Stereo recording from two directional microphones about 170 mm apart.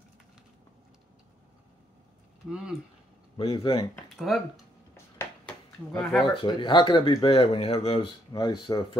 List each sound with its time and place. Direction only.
3.3 s speech: 30° left (ahead or behind)
4.3 s speech: centre (ahead or behind)
5.5 s a sound: 5° left (ahead or behind)
6.4 s speech: 30° left (ahead or behind)